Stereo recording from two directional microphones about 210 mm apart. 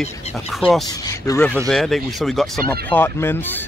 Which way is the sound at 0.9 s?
15° left (ahead or behind).